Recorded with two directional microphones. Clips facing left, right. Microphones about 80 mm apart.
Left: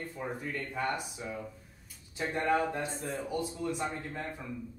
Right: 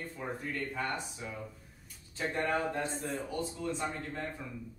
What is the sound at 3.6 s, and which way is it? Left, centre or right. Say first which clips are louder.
Speech: left 1 dB; centre.